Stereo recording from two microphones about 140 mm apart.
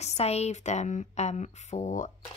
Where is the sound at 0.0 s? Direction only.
50° left (ahead or behind).